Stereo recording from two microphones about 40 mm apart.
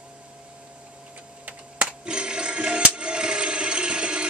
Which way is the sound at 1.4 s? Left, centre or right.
Right.